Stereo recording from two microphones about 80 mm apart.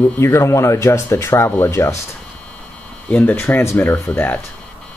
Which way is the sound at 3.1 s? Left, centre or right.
Left.